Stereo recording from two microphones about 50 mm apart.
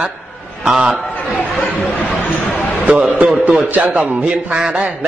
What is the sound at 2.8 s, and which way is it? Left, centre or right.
A man's voice, right.